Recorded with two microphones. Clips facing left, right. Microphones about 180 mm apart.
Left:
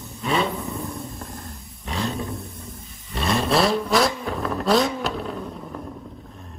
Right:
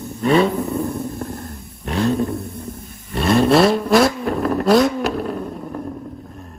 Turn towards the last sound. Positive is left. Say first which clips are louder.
# right 6 dB
turn(degrees=0)  # may be behind; listen again after turning